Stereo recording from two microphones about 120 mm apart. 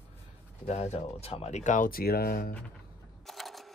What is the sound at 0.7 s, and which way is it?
Speech, 65° left (ahead or behind).